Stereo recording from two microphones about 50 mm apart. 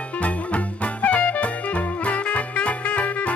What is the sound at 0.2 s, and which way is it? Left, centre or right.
Music, left.